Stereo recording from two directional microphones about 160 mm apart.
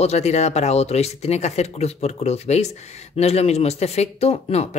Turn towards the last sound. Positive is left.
turn(degrees=40)  # may be behind; listen again after turning